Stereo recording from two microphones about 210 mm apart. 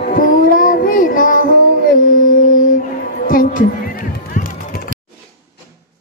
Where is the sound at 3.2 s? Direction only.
40° left (ahead or behind).